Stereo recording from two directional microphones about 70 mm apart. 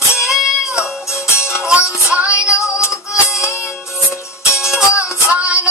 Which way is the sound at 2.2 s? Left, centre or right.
Left.